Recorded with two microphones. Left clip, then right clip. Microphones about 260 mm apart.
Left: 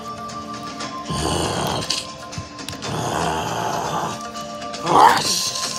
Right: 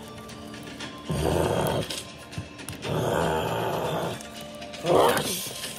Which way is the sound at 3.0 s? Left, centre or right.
Centre.